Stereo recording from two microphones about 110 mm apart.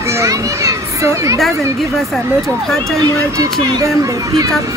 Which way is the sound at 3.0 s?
35° right (ahead or behind).